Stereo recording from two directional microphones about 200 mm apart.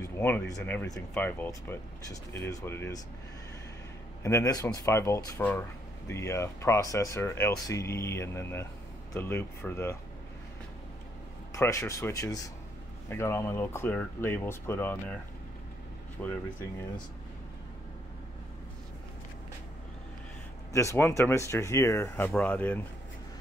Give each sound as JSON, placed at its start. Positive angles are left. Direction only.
{"t": 0.0, "sound": "speech", "side_deg": 10}
{"t": 4.2, "sound": "speech", "side_deg": 15}
{"t": 11.5, "sound": "speech", "side_deg": 15}
{"t": 16.2, "sound": "speech", "side_deg": 10}
{"t": 20.7, "sound": "speech", "side_deg": 15}